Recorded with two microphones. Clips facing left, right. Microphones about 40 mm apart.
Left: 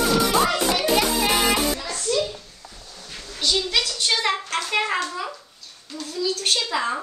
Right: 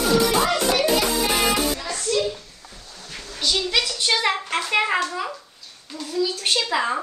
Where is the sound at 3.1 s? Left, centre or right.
Centre.